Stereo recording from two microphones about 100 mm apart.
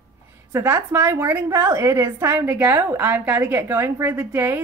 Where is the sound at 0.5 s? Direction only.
25° right (ahead or behind).